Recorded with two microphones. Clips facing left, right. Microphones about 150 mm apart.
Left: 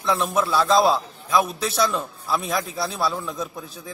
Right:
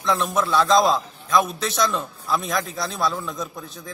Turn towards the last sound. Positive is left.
turn(degrees=5)  # may be behind; listen again after turning